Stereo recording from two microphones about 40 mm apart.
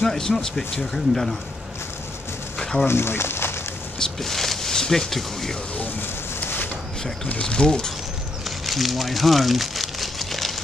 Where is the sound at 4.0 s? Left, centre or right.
Centre.